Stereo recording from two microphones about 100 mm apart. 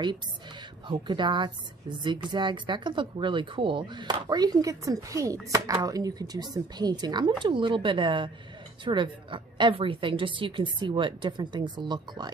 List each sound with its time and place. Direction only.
1.0 s a woman's voice: 50° right (ahead or behind)